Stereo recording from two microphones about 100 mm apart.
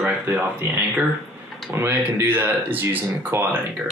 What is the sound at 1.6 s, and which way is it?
Speech, 25° right (ahead or behind).